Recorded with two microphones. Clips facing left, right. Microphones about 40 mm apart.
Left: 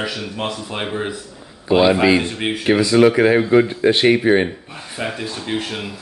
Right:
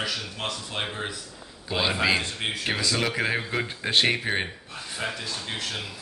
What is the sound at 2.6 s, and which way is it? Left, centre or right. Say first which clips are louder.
Speech: left 15 dB; centre.